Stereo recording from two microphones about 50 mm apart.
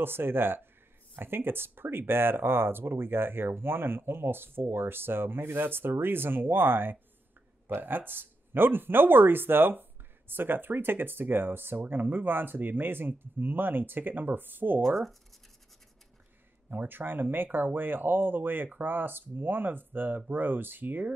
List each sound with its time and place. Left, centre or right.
0.0 s speech: right
16.7 s speech: right